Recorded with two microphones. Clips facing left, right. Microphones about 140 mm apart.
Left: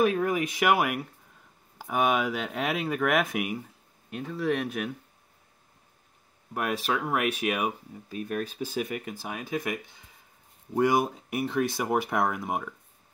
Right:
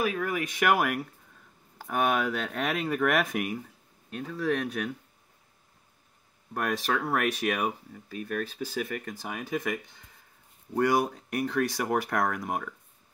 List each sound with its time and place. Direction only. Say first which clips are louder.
0.0 s speech: left 5 dB; 25° left (ahead or behind)
0.6 s speech: right 1 dB; 5° left (ahead or behind)
6.5 s speech: even; 10° left (ahead or behind)
7.9 s speech: left 1 dB; 20° left (ahead or behind)